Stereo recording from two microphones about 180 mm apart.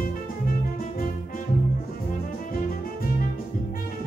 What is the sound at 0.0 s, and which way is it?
Music, 50° left (ahead or behind).